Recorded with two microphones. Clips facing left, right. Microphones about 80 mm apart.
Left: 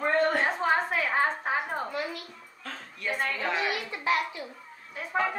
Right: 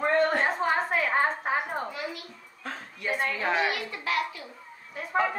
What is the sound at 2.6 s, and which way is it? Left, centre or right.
Dog, centre.